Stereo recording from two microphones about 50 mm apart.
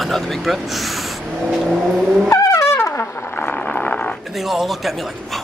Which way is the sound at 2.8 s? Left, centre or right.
Left.